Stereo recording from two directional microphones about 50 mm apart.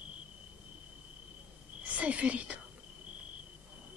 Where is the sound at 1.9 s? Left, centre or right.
Right.